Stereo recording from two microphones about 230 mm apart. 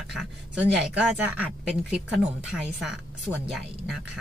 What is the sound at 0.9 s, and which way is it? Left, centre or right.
A woman's voice, centre.